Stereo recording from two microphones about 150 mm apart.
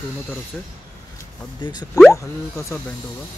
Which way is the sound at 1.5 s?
30° left (ahead or behind).